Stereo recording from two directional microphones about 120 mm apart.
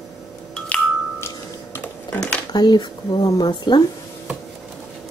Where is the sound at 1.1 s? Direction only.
20° left (ahead or behind).